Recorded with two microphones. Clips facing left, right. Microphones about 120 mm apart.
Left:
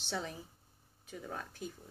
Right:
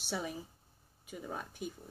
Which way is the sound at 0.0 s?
10° right (ahead or behind).